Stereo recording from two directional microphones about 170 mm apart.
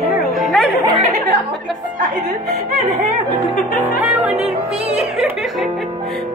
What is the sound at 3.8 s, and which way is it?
Music, 10° right (ahead or behind).